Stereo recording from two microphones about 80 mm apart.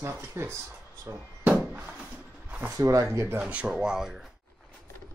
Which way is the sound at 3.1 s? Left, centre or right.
Right.